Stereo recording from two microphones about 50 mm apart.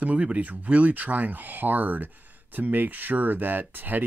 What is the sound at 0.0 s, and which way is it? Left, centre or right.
Speech, right.